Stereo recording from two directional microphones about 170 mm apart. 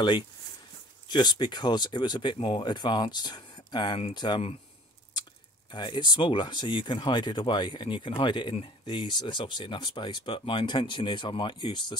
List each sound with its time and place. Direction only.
1.0 s speech: 25° left (ahead or behind)
5.7 s speech: 25° left (ahead or behind)